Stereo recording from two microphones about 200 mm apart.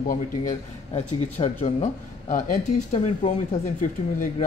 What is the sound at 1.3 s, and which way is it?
Speech, 30° left (ahead or behind).